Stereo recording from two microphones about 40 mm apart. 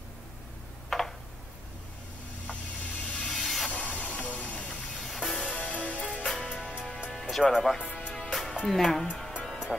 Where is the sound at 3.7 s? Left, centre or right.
Left.